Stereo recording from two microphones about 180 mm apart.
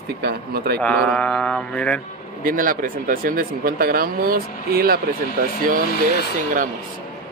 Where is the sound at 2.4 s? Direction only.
50° right (ahead or behind).